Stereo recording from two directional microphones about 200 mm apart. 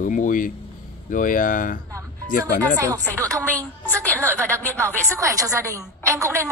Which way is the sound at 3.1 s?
15° right (ahead or behind).